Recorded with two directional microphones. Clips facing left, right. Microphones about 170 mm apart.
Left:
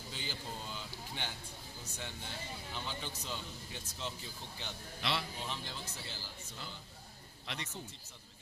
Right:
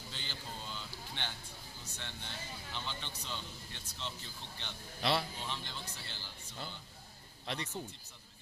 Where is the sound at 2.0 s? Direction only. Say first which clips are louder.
Left 2 dB; 5° left (ahead or behind).